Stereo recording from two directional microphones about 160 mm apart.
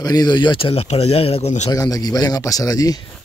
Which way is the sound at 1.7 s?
20° left (ahead or behind).